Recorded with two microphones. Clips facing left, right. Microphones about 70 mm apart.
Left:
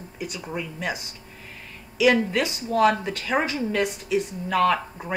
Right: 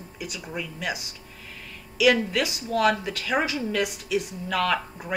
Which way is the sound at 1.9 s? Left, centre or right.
Left.